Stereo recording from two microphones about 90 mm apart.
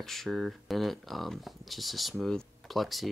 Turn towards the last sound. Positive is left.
turn(degrees=0)  # may be behind; listen again after turning